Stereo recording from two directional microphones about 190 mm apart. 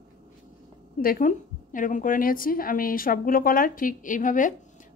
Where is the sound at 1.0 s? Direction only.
45° left (ahead or behind).